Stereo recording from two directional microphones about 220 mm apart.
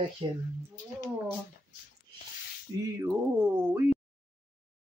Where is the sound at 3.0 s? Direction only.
10° right (ahead or behind).